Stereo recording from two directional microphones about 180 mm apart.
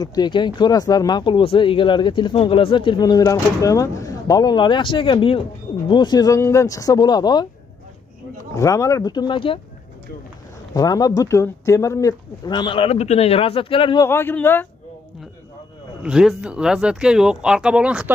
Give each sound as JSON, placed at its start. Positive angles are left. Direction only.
{"t": 0.0, "sound": "speech", "side_deg": 25}
{"t": 8.5, "sound": "speech", "side_deg": 15}
{"t": 10.7, "sound": "speech", "side_deg": 20}
{"t": 14.0, "sound": "a man's voice", "side_deg": 10}
{"t": 16.0, "sound": "speech", "side_deg": -5}